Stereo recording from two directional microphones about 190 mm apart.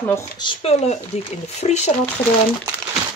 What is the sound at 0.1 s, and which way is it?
Speech, 25° left (ahead or behind).